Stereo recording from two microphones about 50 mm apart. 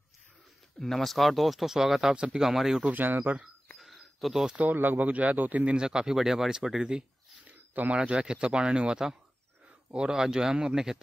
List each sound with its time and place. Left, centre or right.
0.7 s speech: centre
2.1 s speech: centre
2.4 s speech: centre
2.9 s a man's voice: right
3.7 s cricket: centre
4.6 s a man's voice: right
5.7 s speech: centre
7.4 s a sound: right
7.9 s speech: right